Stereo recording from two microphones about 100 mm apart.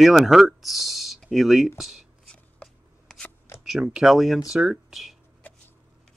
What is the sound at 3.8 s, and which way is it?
Speech, 5° right (ahead or behind).